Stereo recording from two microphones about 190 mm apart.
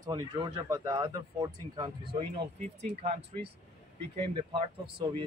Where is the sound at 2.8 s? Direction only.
35° right (ahead or behind).